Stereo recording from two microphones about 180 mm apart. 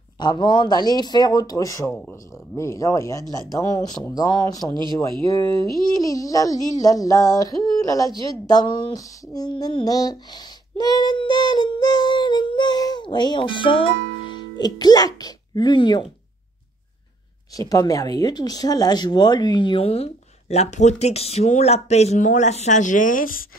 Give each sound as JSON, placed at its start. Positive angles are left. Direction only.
{"t": 0.2, "sound": "speech", "side_deg": 25}
{"t": 1.9, "sound": "speech", "side_deg": 10}
{"t": 17.6, "sound": "speech", "side_deg": 20}